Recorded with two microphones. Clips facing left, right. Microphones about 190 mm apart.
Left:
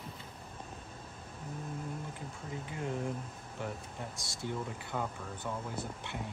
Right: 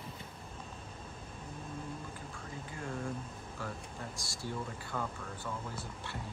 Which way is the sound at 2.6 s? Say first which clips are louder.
Left 3 dB; 20° left (ahead or behind).